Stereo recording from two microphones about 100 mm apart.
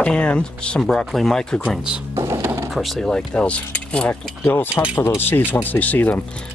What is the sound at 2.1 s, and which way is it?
Speech, 35° right (ahead or behind).